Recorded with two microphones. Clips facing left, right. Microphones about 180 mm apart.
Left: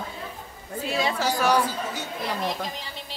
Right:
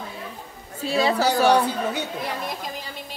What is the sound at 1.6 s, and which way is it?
Speech, 60° right (ahead or behind).